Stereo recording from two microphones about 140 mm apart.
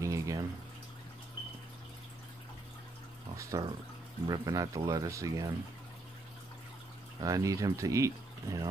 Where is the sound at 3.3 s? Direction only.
20° right (ahead or behind).